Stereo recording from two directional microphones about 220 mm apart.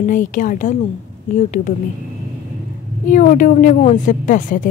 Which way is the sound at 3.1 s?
35° left (ahead or behind).